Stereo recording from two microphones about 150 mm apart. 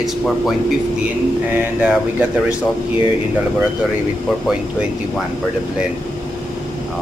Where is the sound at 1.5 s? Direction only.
10° right (ahead or behind).